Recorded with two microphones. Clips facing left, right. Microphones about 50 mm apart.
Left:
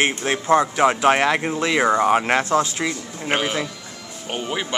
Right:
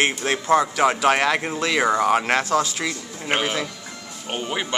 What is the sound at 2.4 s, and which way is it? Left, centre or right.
Speech, left.